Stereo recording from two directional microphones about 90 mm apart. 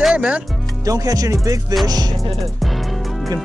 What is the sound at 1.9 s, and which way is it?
Music, 45° right (ahead or behind).